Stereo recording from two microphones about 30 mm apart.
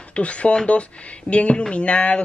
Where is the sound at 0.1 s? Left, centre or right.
Left.